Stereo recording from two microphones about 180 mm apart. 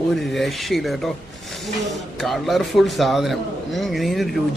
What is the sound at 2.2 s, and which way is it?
A man's voice, centre (ahead or behind).